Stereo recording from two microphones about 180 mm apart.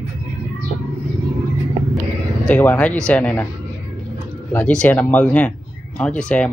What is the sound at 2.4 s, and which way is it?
Speech, 10° left (ahead or behind).